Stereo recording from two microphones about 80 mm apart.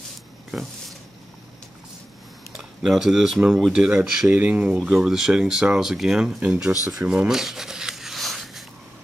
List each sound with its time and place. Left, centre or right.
0.5 s a sound: centre
2.5 s speech: centre
4.8 s speech: centre
6.9 s rub: centre